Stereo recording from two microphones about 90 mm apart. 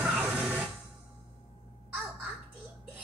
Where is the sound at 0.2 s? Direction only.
20° right (ahead or behind).